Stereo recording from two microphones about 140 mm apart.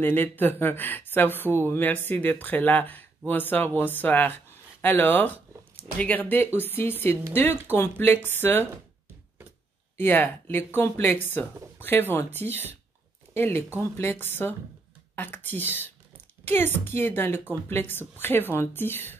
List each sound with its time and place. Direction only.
0.0 s speech: 15° left (ahead or behind)
9.9 s speech: 15° left (ahead or behind)